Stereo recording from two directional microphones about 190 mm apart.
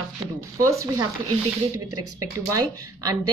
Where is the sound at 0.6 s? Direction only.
15° right (ahead or behind).